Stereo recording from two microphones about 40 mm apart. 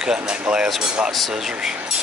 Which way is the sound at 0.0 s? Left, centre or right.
Centre.